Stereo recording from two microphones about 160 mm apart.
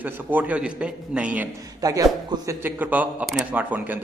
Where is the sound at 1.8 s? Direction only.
20° right (ahead or behind).